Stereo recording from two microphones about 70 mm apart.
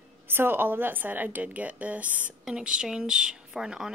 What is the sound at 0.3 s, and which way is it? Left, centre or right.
Speech, right.